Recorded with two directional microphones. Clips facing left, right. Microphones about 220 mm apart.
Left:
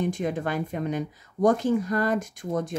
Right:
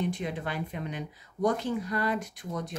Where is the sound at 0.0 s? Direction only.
45° left (ahead or behind).